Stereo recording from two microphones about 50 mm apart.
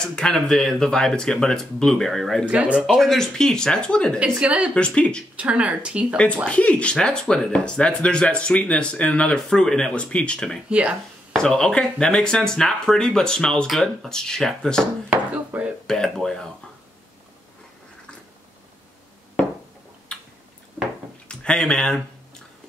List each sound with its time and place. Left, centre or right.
0.0 s speech: centre
2.4 s speech: right
3.0 s speech: centre
4.2 s speech: right
4.7 s speech: left
5.3 s speech: right
6.5 s speech: left
10.7 s speech: right
11.3 s speech: centre
15.0 s speech: right
15.9 s speech: centre
20.1 s a sound: centre
21.3 s speech: centre